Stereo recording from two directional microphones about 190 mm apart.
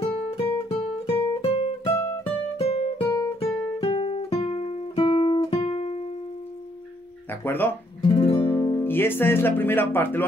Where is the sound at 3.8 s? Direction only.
30° left (ahead or behind).